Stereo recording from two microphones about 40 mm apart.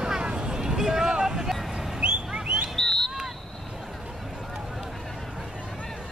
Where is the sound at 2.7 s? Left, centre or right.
Centre.